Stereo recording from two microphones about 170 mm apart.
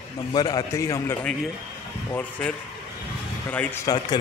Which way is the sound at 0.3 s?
25° left (ahead or behind).